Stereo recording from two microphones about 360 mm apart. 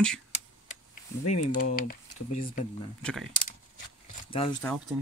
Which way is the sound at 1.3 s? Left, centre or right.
Left.